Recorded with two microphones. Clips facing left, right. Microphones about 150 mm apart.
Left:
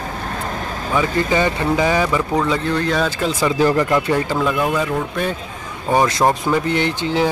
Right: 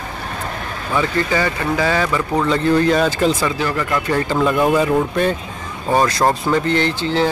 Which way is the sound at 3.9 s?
10° left (ahead or behind).